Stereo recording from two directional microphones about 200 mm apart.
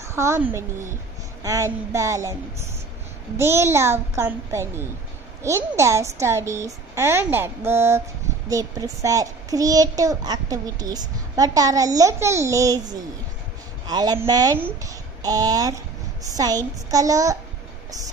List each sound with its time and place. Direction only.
0.0 s a woman's voice: 15° right (ahead or behind)
3.3 s a child's voice: 15° right (ahead or behind)